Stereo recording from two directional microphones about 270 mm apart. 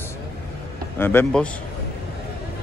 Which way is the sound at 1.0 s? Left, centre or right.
Centre.